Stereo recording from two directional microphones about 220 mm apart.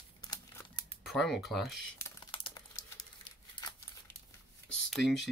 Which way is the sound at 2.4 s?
20° left (ahead or behind).